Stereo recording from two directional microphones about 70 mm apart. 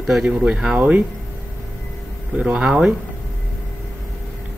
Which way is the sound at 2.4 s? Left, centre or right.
Centre.